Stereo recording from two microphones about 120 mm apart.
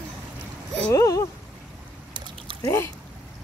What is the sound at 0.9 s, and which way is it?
Speech, 30° left (ahead or behind).